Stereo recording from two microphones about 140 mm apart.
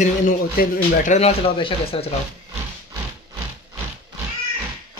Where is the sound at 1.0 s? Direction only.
55° left (ahead or behind).